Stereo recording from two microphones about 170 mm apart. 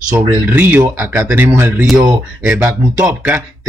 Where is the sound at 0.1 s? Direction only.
15° right (ahead or behind).